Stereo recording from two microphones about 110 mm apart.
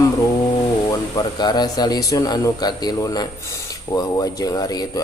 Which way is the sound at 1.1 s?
40° left (ahead or behind).